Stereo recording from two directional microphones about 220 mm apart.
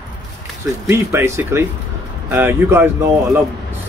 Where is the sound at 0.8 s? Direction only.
10° right (ahead or behind).